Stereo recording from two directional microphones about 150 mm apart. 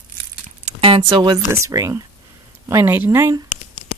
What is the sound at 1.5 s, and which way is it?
Speech, 20° right (ahead or behind).